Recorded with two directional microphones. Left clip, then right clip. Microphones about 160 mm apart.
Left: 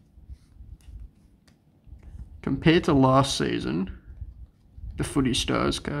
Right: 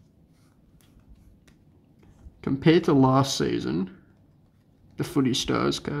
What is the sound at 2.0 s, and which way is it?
Speech, 5° left (ahead or behind).